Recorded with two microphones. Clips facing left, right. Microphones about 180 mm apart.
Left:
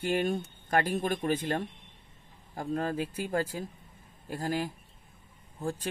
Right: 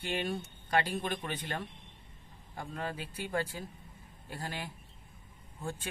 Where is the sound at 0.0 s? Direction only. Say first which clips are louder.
Left 6 dB; 45° left (ahead or behind).